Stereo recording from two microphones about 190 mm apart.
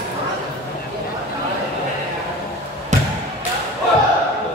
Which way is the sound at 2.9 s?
40° right (ahead or behind).